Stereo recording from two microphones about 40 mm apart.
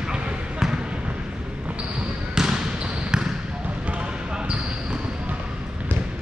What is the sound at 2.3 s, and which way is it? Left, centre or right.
Trickle, centre.